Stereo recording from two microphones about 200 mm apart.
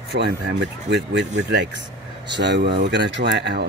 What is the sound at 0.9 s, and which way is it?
Speech, 60° right (ahead or behind).